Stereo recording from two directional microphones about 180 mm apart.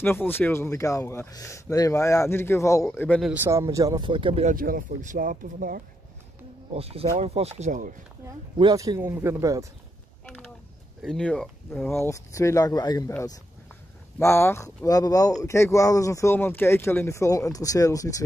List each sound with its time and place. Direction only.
0.0 s speech: 10° left (ahead or behind)
3.2 s speech: 5° right (ahead or behind)
3.4 s speech: 15° right (ahead or behind)
4.5 s speech: 50° right (ahead or behind)
6.7 s speech: 35° right (ahead or behind)
8.5 s speech: 20° right (ahead or behind)
11.0 s speech: 5° left (ahead or behind); by 13.1 s 20° left (ahead or behind)
14.1 s speech: 15° left (ahead or behind)